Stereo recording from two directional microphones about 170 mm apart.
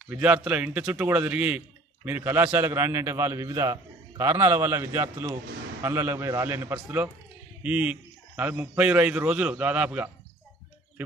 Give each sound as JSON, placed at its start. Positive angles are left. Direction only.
{"t": 0.1, "sound": "a man's voice", "side_deg": -10}